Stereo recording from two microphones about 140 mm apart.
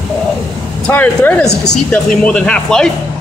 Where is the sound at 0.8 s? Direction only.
10° left (ahead or behind).